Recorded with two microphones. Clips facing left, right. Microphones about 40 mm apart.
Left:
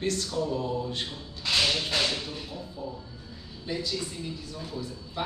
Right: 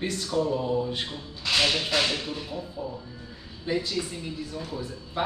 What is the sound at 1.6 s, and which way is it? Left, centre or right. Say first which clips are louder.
A man's voice: right 2 dB; right.